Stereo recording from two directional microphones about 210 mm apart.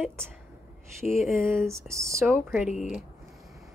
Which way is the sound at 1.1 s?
Centre (ahead or behind).